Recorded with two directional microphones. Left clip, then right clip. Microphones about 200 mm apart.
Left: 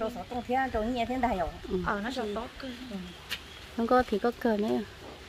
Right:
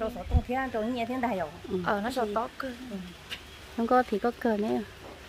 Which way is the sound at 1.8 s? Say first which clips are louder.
Right 4 dB; 45° right (ahead or behind).